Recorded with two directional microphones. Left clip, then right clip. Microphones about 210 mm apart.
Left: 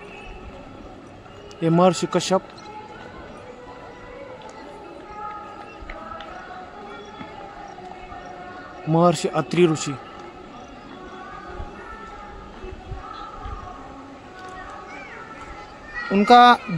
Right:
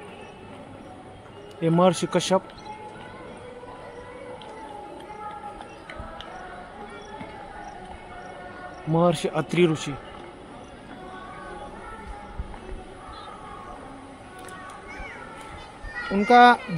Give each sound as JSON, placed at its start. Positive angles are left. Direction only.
{"t": 1.6, "sound": "a man's voice", "side_deg": 10}
{"t": 8.9, "sound": "a man's voice", "side_deg": 15}
{"t": 16.1, "sound": "a child's voice", "side_deg": 25}